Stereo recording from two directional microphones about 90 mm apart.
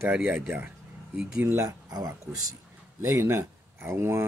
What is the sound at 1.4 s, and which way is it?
Speech, 30° right (ahead or behind).